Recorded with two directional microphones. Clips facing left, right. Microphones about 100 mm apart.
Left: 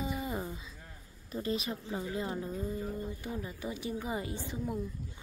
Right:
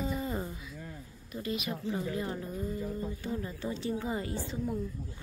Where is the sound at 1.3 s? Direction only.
30° left (ahead or behind).